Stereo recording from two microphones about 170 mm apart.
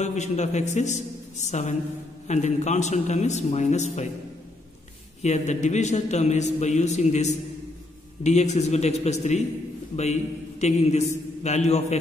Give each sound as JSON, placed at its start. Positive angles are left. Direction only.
{"t": 0.0, "sound": "a man's voice", "side_deg": 40}
{"t": 5.2, "sound": "a man's voice", "side_deg": 45}
{"t": 10.6, "sound": "a man's voice", "side_deg": 40}